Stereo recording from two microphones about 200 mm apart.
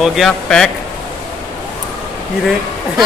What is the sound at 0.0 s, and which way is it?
Speech, centre (ahead or behind).